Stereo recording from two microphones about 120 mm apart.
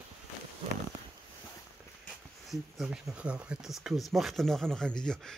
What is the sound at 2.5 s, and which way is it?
Speech, 5° right (ahead or behind).